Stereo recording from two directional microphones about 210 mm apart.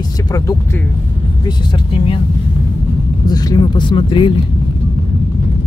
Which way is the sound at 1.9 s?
25° left (ahead or behind).